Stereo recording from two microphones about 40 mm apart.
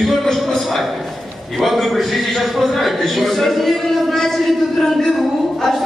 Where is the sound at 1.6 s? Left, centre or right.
Centre.